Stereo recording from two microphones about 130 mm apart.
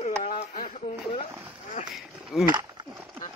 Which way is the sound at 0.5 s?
90° left.